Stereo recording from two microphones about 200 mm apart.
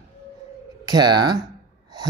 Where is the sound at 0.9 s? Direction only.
20° right (ahead or behind).